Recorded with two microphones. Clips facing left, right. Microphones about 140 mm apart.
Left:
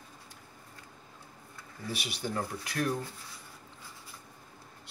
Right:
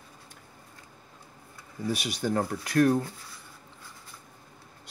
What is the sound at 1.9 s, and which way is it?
Speech, 45° right (ahead or behind).